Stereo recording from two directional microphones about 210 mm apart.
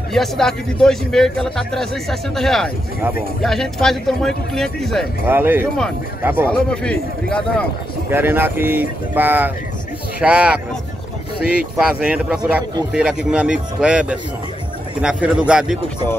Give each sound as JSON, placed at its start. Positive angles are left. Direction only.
{"t": 0.1, "sound": "a man's voice", "side_deg": 0}
{"t": 5.3, "sound": "speech", "side_deg": -10}
{"t": 6.5, "sound": "a man's voice", "side_deg": 5}
{"t": 8.1, "sound": "a man's voice", "side_deg": -10}